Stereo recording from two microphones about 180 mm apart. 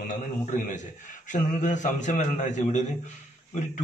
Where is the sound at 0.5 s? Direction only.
45° left (ahead or behind).